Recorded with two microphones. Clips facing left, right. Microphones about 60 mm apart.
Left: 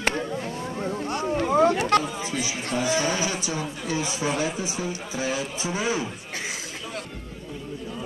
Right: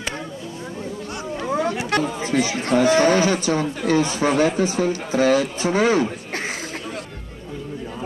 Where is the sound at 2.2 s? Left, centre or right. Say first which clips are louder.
Right 8 dB; right.